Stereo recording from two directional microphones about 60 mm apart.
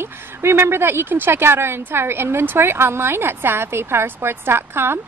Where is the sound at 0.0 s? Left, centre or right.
Right.